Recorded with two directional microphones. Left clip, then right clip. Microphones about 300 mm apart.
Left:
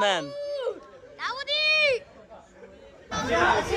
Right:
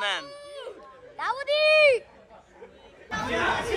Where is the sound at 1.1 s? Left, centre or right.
Centre.